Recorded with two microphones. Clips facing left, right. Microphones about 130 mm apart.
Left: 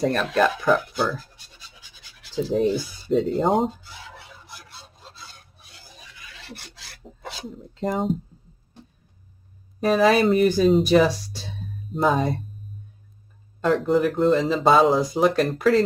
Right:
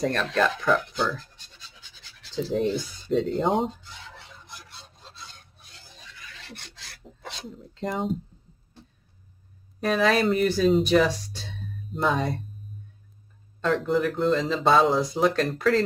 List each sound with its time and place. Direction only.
0.0 s scratch: 10° left (ahead or behind)
2.5 s fowl: 5° left (ahead or behind)
7.1 s filing: 5° left (ahead or behind)
7.5 s speech: centre (ahead or behind)
9.8 s speech: 5° left (ahead or behind)
13.8 s speech: centre (ahead or behind)